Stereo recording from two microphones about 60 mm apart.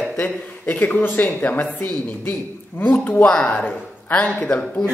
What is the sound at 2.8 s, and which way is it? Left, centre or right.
Speech, left.